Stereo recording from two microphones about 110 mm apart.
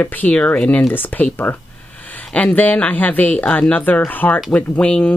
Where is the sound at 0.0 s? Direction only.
15° left (ahead or behind).